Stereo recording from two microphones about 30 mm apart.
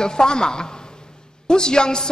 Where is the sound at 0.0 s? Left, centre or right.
Left.